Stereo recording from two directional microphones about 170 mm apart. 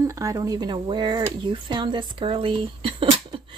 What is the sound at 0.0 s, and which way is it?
Speech, 20° right (ahead or behind).